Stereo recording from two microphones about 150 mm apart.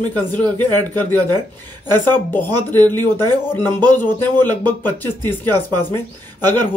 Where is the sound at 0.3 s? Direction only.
10° left (ahead or behind).